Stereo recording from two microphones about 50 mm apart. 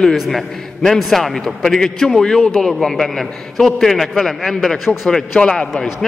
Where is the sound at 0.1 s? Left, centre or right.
Centre.